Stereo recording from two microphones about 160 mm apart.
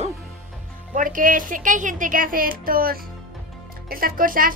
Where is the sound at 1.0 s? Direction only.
60° right (ahead or behind).